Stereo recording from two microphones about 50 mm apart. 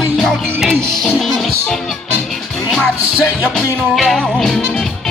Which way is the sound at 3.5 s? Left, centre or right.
Centre.